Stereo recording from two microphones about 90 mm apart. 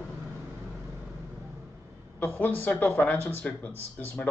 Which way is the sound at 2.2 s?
20° left (ahead or behind).